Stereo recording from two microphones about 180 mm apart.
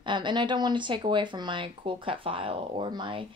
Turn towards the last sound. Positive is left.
turn(degrees=-25)  # may be behind; listen again after turning